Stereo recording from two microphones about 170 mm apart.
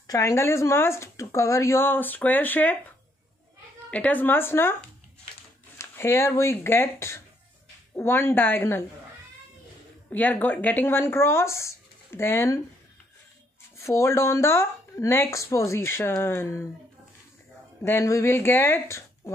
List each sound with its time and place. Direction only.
0.0 s speech: 20° left (ahead or behind)
3.9 s speech: 10° left (ahead or behind)
5.8 s speech: 15° left (ahead or behind)
10.0 s speech: 10° left (ahead or behind)
13.7 s speech: 15° left (ahead or behind)
17.8 s speech: 15° left (ahead or behind)